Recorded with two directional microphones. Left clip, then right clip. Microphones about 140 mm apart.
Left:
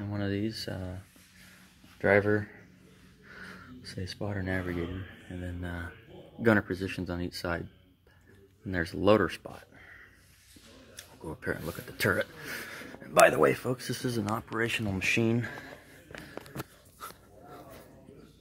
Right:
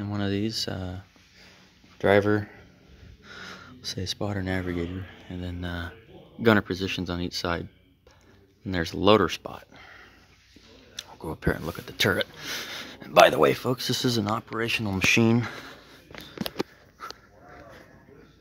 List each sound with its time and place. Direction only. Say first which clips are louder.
0.0 s speech: right 4 dB; 35° right (ahead or behind)
8.6 s speech: right 4 dB; 25° right (ahead or behind)
13.3 s speech: right 4 dB; 25° right (ahead or behind)
14.3 s speech: right 4 dB; 25° right (ahead or behind)
15.1 s speech: right 6 dB; 60° right (ahead or behind)